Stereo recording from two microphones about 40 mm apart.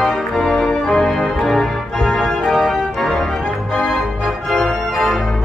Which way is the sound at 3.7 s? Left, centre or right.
Centre.